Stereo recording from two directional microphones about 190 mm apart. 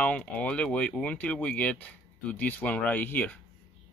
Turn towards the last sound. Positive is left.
turn(degrees=10)  # may be behind; listen again after turning